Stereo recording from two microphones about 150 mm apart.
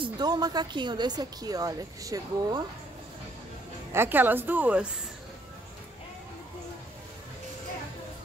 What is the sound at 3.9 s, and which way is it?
A woman's voice, 15° right (ahead or behind).